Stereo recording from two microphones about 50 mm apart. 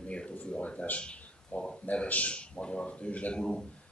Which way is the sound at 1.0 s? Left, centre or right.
Left.